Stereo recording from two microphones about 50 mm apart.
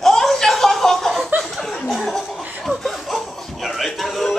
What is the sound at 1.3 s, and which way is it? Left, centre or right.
Chuckle, right.